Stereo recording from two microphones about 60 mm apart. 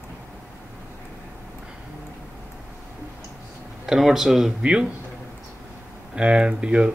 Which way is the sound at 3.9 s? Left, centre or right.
Centre.